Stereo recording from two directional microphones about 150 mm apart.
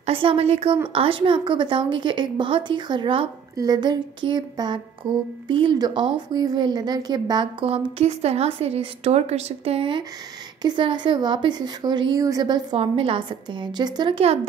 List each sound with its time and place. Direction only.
0.0 s speech: 35° right (ahead or behind)
7.6 s speech: 45° right (ahead or behind); by 12.6 s 25° right (ahead or behind)
12.7 s speech: 40° right (ahead or behind)